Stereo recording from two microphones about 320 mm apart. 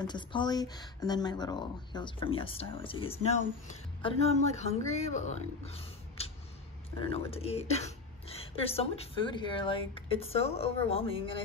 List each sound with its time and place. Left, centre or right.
0.0 s speech: centre
7.0 s speech: centre